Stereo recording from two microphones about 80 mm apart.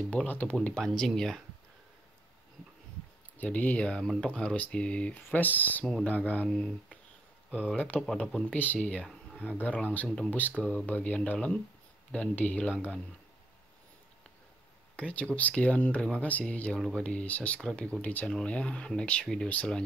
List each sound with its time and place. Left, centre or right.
0.1 s speech: centre
0.7 s speech: centre
3.3 s speech: centre
6.5 s speech: centre
8.1 s speech: centre
10.6 s speech: centre
15.0 s speech: centre